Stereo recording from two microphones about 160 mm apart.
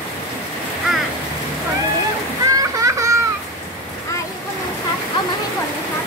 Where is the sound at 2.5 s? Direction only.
20° right (ahead or behind).